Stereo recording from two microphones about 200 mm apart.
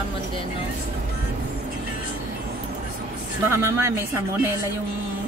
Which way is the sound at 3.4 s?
10° right (ahead or behind).